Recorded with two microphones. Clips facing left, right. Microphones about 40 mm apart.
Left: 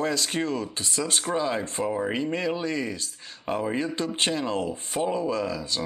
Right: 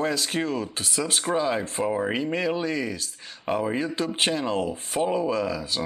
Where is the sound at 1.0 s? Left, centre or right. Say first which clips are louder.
Right 2 dB; right.